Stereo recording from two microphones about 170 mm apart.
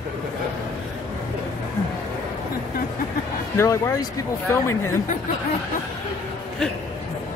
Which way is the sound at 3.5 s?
15° left (ahead or behind).